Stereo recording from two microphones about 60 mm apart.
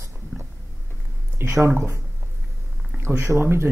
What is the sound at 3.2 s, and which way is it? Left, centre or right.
Speech, right.